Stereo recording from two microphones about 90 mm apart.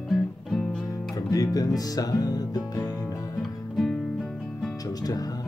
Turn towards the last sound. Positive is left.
turn(degrees=45)  # may be behind; listen again after turning